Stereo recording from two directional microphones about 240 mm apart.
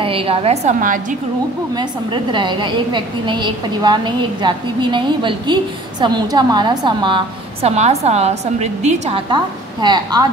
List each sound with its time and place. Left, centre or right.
0.0 s a woman's voice: right
1.8 s a woman's voice: centre